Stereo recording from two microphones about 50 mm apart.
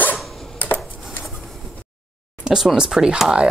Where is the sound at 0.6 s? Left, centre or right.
Left.